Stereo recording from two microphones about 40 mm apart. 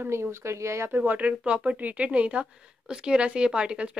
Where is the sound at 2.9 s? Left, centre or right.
Right.